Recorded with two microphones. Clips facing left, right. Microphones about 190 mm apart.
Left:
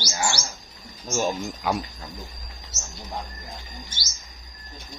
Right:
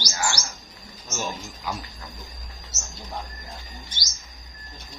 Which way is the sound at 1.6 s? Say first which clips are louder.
Left 6 dB; 65° left (ahead or behind).